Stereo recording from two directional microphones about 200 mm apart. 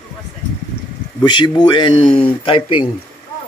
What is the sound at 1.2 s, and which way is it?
Speech, 20° left (ahead or behind).